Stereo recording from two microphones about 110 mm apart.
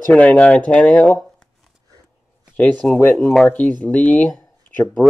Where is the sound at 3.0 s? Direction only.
20° left (ahead or behind).